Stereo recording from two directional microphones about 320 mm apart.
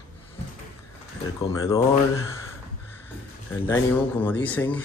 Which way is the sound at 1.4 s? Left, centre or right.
Centre.